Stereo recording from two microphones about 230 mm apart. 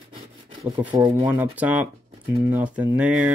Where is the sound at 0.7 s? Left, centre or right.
Centre.